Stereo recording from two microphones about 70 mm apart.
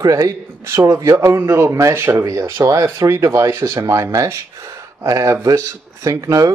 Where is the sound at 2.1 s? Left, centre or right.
Right.